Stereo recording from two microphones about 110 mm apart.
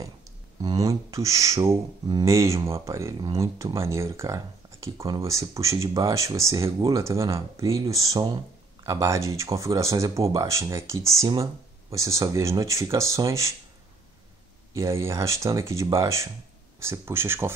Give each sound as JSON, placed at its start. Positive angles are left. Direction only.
{"t": 0.6, "sound": "speech", "side_deg": -35}
{"t": 14.7, "sound": "speech", "side_deg": -25}